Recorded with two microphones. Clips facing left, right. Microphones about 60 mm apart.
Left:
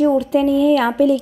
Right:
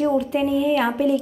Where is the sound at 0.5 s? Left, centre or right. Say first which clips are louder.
Left 5 dB; left.